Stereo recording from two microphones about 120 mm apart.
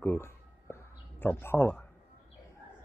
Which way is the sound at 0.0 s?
20° left (ahead or behind).